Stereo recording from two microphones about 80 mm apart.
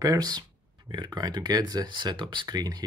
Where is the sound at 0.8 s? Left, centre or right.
Right.